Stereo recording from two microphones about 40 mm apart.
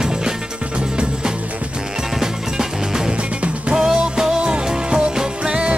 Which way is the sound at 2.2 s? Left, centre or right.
Centre.